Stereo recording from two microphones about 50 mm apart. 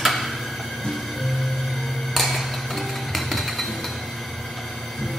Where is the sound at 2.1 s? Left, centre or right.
Centre.